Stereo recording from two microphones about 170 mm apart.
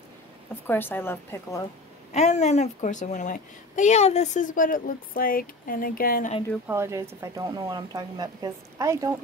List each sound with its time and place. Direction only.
0.7 s a woman's voice: 10° left (ahead or behind)
2.1 s a woman's voice: 40° left (ahead or behind); by 6.3 s 60° left (ahead or behind)
6.7 s speech: 15° right (ahead or behind)